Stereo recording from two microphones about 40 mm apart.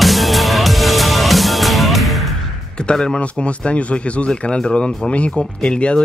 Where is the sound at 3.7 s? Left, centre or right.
Left.